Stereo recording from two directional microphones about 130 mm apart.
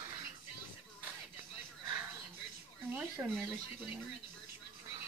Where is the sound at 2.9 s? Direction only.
10° right (ahead or behind).